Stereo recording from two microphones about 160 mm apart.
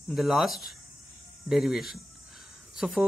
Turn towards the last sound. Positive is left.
turn(degrees=0)  # may be behind; listen again after turning